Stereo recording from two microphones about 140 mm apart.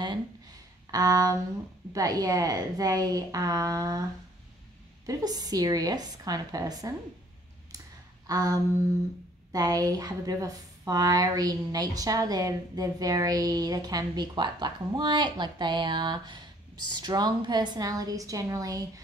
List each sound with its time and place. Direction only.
0.9 s speech: 25° right (ahead or behind)
5.0 s speech: 25° right (ahead or behind)
8.3 s speech: 25° right (ahead or behind)